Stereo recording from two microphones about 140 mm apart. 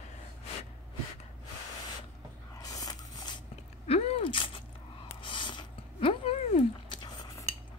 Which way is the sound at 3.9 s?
45° left (ahead or behind).